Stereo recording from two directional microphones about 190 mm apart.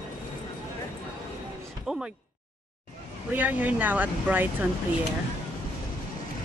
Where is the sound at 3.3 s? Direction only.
10° right (ahead or behind).